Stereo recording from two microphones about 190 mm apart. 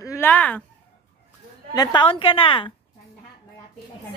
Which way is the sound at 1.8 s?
25° left (ahead or behind).